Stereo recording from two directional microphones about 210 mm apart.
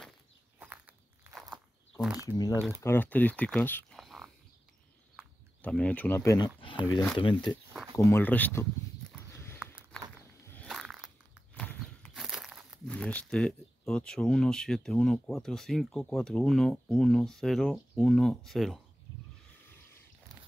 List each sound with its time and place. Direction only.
0.6 s walk: 5° right (ahead or behind)
2.2 s speech: 15° left (ahead or behind)
2.5 s speech: 10° right (ahead or behind)
2.8 s speech: 10° left (ahead or behind)
7.9 s speech: 15° left (ahead or behind)
9.6 s a sound: 5° right (ahead or behind)
10.4 s walk: 10° left (ahead or behind)
10.7 s a sound: centre (ahead or behind)
11.5 s speech: 5° left (ahead or behind)